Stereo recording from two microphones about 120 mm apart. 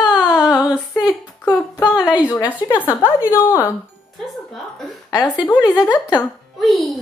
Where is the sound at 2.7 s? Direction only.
20° left (ahead or behind).